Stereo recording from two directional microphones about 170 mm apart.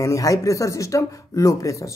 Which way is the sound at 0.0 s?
20° left (ahead or behind).